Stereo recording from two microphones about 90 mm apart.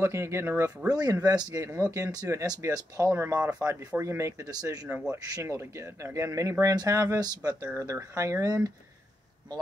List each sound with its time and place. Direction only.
0.0 s speech: 30° right (ahead or behind)
0.8 s speech: 45° right (ahead or behind)
4.5 s speech: 45° right (ahead or behind)